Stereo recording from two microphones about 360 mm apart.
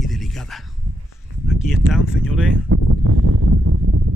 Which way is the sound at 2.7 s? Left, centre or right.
Right.